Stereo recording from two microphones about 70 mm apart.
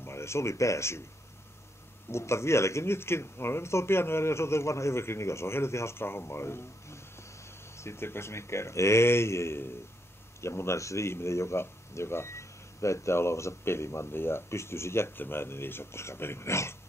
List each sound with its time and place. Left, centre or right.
0.0 s speech: left
2.0 s speech: left